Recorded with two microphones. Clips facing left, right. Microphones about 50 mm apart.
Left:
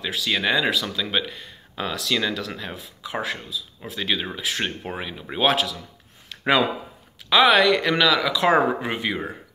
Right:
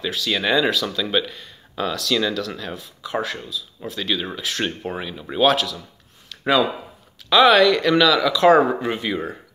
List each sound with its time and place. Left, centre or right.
0.0 s speech: centre
6.2 s a sound: left
7.2 s speech: centre